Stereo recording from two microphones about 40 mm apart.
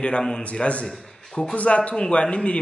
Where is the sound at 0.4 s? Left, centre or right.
Left.